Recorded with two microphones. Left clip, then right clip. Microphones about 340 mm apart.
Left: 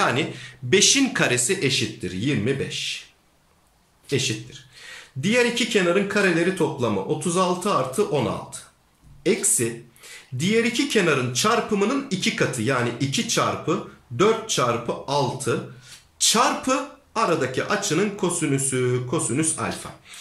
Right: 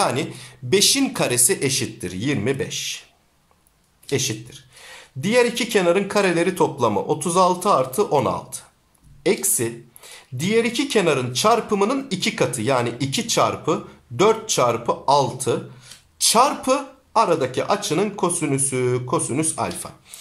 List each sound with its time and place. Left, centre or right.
0.0 s speech: centre
4.1 s speech: centre